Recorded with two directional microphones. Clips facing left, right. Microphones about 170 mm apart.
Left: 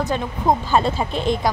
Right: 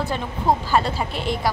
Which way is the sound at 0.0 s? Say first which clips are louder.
Left 2 dB; 15° left (ahead or behind).